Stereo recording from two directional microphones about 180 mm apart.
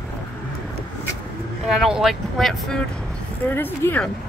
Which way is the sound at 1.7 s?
Centre (ahead or behind).